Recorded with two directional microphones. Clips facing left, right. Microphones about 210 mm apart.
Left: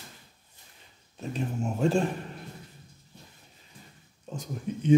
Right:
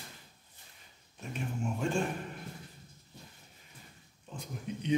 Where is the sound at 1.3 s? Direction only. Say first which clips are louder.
Left 4 dB; 40° left (ahead or behind).